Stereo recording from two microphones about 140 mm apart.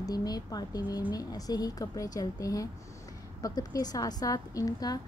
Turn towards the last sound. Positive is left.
turn(degrees=25)  # may be behind; listen again after turning